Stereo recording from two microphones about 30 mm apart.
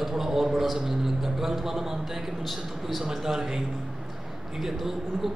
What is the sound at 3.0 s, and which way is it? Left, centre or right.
Speech, centre.